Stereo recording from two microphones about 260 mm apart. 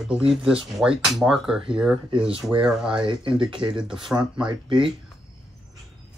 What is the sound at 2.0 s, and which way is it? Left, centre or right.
Speech, centre.